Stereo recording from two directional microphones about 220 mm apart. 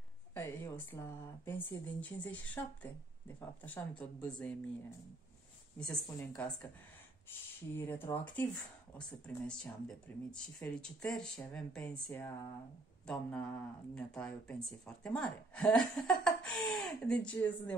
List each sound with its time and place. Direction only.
0.3 s speech: 10° left (ahead or behind)
5.8 s speech: 10° left (ahead or behind)